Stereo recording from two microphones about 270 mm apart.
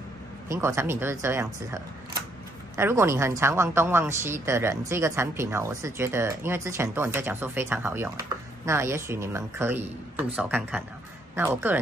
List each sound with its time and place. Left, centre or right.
0.5 s speech: centre